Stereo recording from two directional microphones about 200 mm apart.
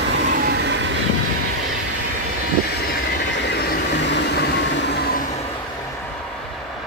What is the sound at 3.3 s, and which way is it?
Train, 60° left (ahead or behind).